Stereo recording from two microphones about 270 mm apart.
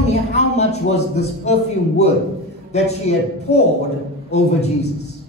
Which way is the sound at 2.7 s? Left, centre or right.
Left.